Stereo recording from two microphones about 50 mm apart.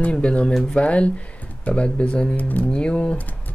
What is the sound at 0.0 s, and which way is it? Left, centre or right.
Speech, left.